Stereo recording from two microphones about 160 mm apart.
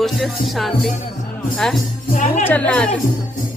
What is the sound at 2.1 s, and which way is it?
Speech, 50° left (ahead or behind).